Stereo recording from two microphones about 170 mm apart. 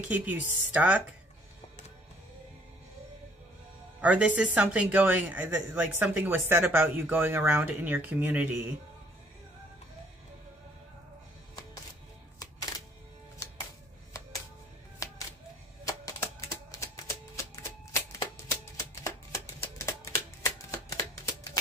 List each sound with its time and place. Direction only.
0.1 s speech: 10° right (ahead or behind)
4.0 s speech: 10° right (ahead or behind)
12.4 s music: 20° left (ahead or behind)
15.0 s music: 20° left (ahead or behind)
20.4 s typewriter: 15° left (ahead or behind)